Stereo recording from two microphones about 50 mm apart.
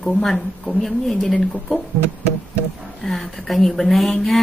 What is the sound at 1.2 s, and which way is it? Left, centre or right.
Speech, centre.